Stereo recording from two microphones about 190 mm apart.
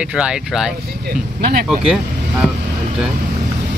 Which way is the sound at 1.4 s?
55° right (ahead or behind).